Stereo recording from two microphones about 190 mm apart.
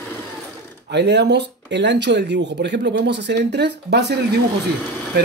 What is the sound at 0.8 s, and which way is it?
Speech, 65° right (ahead or behind).